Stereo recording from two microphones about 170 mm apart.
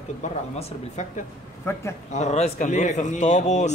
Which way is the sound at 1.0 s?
45° left (ahead or behind).